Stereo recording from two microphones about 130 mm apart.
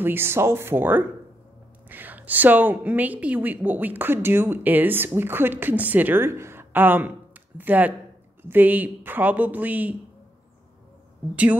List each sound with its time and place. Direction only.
0.0 s a woman's voice: 15° right (ahead or behind)